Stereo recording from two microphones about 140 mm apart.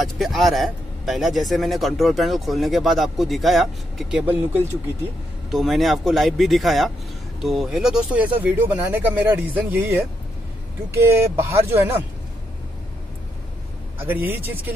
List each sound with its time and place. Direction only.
0.0 s speech: centre (ahead or behind)
5.5 s speech: centre (ahead or behind); by 11.9 s 15° right (ahead or behind)
13.9 s speech: 15° right (ahead or behind)